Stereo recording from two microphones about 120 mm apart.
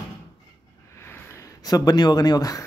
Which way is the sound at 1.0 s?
20° left (ahead or behind).